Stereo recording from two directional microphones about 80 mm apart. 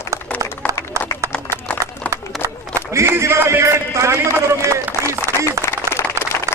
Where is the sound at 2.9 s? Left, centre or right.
Right.